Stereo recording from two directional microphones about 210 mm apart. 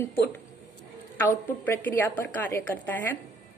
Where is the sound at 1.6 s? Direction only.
10° left (ahead or behind).